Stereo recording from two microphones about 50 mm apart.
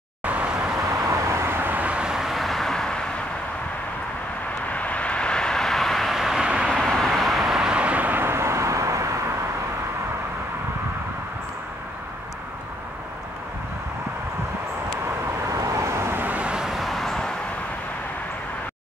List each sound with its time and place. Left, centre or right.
0.2 s vehicle: right
0.8 s vehicle: right
2.0 s vehicle: centre
4.7 s vehicle: left; by 6.5 s centre
6.8 s vehicle: centre
7.5 s vehicle: centre
8.2 s vehicle: right
15.4 s vehicle: right
16.3 s vehicle: right
16.5 s vehicle: centre
16.8 s vehicle: centre